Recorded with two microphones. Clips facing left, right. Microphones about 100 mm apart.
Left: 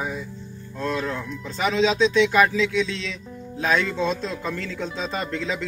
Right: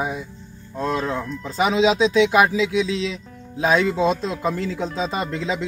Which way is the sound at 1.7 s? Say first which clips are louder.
Right 2 dB; 10° right (ahead or behind).